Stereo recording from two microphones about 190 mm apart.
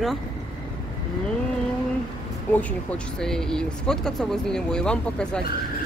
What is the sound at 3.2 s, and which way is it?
Speech, 5° left (ahead or behind).